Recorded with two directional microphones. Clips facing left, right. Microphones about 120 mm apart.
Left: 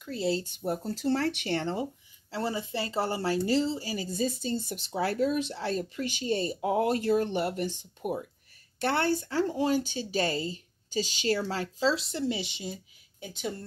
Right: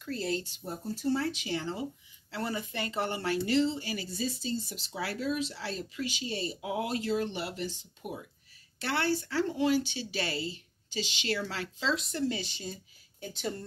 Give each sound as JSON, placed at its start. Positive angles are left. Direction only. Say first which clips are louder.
{"t": 0.0, "sound": "speech", "louder": "left 4 dB", "side_deg": 20}
{"t": 0.4, "sound": "speech", "louder": "left 7 dB", "side_deg": 50}
{"t": 2.3, "sound": "speech", "louder": "left 3 dB", "side_deg": 30}